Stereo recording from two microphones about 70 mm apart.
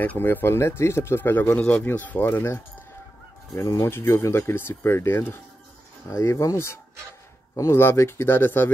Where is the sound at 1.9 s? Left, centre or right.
Left.